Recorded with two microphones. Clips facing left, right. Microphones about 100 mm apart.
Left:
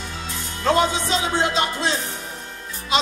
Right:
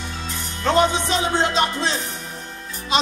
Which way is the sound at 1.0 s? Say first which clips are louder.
Right 1 dB; 20° left (ahead or behind).